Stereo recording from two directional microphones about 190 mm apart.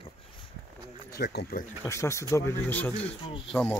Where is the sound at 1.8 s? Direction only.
15° left (ahead or behind).